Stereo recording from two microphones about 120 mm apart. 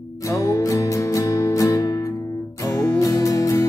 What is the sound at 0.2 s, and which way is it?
Music, 25° left (ahead or behind).